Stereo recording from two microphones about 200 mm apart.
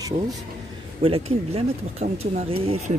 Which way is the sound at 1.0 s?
30° right (ahead or behind).